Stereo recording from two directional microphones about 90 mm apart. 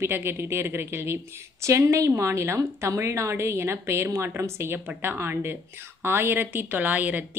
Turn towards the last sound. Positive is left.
turn(degrees=-20)  # may be behind; listen again after turning